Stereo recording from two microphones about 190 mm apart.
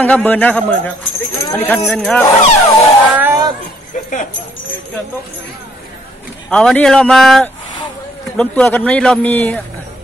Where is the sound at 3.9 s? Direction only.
40° left (ahead or behind).